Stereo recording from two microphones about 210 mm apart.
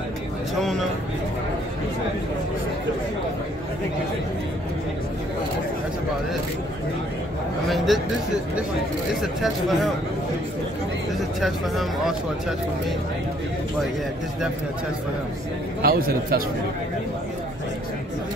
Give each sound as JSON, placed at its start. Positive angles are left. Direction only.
{"t": 0.6, "sound": "speech", "side_deg": 0}
{"t": 7.6, "sound": "a man's voice", "side_deg": 0}
{"t": 9.2, "sound": "speech", "side_deg": 0}
{"t": 11.1, "sound": "speech", "side_deg": 0}
{"t": 15.8, "sound": "a man's voice", "side_deg": -45}